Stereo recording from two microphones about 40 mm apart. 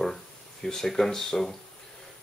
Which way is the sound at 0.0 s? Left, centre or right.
Centre.